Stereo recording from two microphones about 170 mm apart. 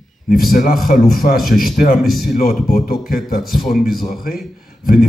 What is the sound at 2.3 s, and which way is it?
Speech, 60° left (ahead or behind).